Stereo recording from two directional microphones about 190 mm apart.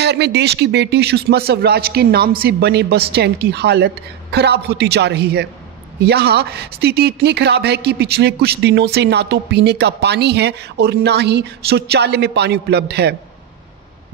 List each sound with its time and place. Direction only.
0.0 s speech: 60° right (ahead or behind)